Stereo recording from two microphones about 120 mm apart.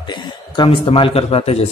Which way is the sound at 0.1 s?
45° left (ahead or behind).